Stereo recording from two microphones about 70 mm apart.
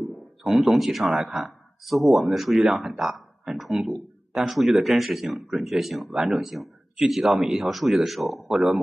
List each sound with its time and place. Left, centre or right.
0.4 s speech: centre